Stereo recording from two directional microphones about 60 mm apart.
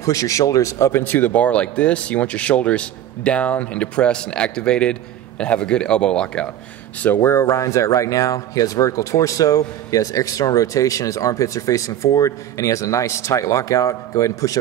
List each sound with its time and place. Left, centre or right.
0.0 s speech: left
1.0 s speech: left; by 6.5 s centre
7.2 s speech: left
7.5 s speech: left